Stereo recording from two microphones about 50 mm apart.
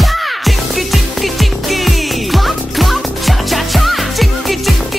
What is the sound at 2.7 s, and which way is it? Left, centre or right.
Music, centre.